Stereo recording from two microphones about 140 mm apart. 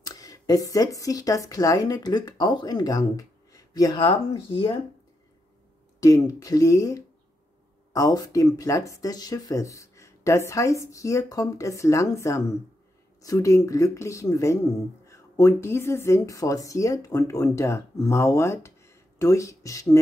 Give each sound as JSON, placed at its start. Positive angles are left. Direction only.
{"t": 0.0, "sound": "speech", "side_deg": 25}
{"t": 5.9, "sound": "speech", "side_deg": 25}